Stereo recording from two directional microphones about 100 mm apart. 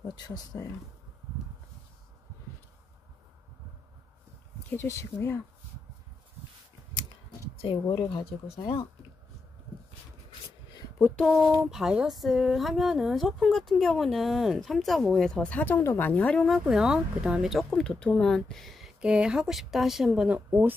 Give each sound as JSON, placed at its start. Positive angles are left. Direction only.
{"t": 0.1, "sound": "speech", "side_deg": 40}
{"t": 4.6, "sound": "speech", "side_deg": 25}
{"t": 6.9, "sound": "a sound", "side_deg": 50}
{"t": 7.8, "sound": "speech", "side_deg": 55}
{"t": 11.0, "sound": "a sound", "side_deg": 20}
{"t": 11.7, "sound": "speech", "side_deg": -5}
{"t": 15.5, "sound": "speech", "side_deg": 20}
{"t": 16.6, "sound": "speech", "side_deg": -5}
{"t": 17.6, "sound": "speech", "side_deg": 10}
{"t": 20.4, "sound": "speech", "side_deg": -20}